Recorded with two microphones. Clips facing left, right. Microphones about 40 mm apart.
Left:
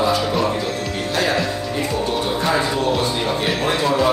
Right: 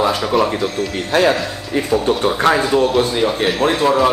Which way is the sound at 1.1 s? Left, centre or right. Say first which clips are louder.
Right 7 dB; right.